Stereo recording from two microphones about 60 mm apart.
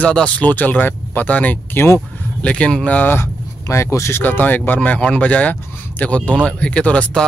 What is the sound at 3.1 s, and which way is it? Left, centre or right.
Speech, left.